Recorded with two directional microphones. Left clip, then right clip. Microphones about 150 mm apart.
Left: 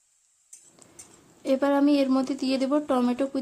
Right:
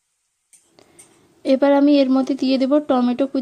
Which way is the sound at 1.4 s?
35° right (ahead or behind).